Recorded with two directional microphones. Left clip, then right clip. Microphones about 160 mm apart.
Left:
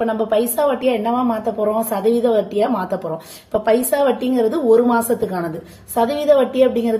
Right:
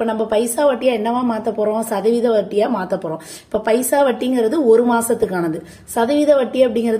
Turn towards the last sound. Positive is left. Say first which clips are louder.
# even
turn(degrees=-35)  # may be behind; listen again after turning